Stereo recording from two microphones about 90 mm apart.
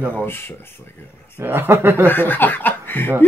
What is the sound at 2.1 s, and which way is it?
Speech, 20° left (ahead or behind).